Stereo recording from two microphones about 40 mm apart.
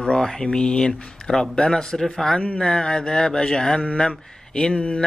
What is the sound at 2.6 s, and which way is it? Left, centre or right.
Mantra, left.